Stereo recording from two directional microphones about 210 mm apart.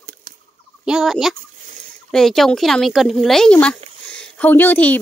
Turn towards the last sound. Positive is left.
turn(degrees=10)  # may be behind; listen again after turning